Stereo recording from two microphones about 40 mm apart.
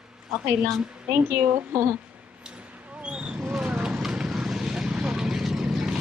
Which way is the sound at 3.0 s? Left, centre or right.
Right.